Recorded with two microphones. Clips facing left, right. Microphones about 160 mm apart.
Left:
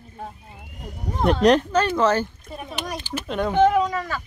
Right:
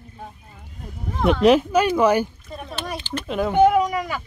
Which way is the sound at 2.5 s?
10° left (ahead or behind).